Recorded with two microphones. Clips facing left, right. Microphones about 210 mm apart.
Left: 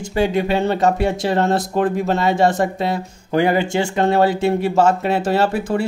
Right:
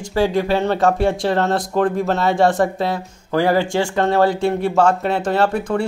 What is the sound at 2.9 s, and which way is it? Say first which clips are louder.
Speech: left 1 dB; 20° left (ahead or behind).